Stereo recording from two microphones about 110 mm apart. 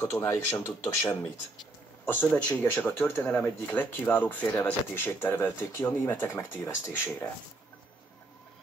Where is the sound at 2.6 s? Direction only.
15° left (ahead or behind).